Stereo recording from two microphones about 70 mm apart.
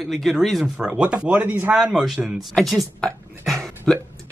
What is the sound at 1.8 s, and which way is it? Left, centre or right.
A man's voice, centre.